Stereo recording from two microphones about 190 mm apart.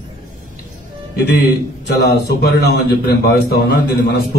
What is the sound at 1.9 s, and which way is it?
A man's voice, 55° left (ahead or behind).